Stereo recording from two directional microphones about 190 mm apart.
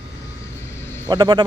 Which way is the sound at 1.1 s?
20° right (ahead or behind).